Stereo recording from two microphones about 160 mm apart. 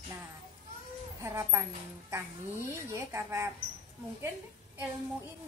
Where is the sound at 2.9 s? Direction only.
15° right (ahead or behind).